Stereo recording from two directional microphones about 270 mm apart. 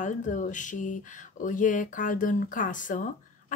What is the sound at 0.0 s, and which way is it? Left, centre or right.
Speech, left.